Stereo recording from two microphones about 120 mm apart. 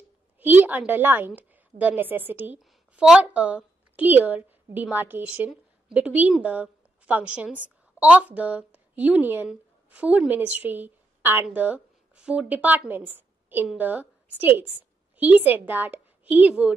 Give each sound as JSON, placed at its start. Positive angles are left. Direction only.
{"t": 0.4, "sound": "a woman's voice", "side_deg": -15}